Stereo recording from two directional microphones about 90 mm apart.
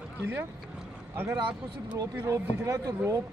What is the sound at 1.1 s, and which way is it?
Speech, 20° right (ahead or behind).